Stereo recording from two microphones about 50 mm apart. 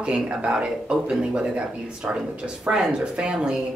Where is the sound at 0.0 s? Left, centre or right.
Right.